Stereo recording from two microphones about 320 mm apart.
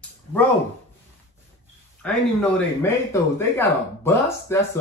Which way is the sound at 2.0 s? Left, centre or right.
Centre.